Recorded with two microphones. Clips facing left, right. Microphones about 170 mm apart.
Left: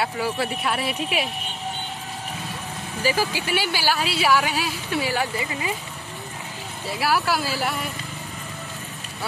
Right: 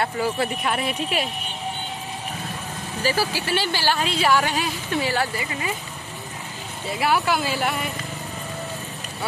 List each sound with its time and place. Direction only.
0.0 s speech: centre (ahead or behind)
3.0 s speech: 15° left (ahead or behind)
5.4 s speech: 25° left (ahead or behind)
6.9 s speech: centre (ahead or behind)